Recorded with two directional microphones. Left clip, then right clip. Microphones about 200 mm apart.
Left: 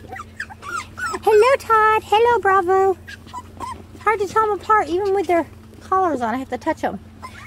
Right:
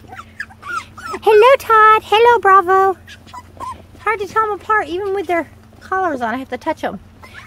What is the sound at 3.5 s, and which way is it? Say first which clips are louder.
Speech: right 6 dB; 10° right (ahead or behind).